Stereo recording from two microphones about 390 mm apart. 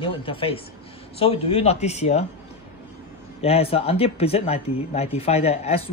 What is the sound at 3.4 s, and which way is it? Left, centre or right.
A woman's voice, centre.